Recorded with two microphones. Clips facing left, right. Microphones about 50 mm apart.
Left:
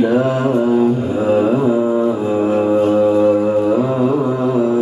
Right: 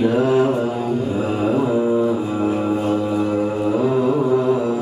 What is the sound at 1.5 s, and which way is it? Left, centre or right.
Music, centre.